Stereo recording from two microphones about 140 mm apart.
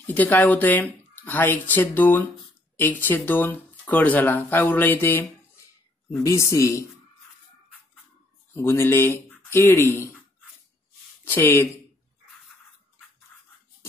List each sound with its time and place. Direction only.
0.0 s speech: 15° left (ahead or behind)
8.5 s speech: 15° left (ahead or behind)
11.2 s speech: 15° left (ahead or behind)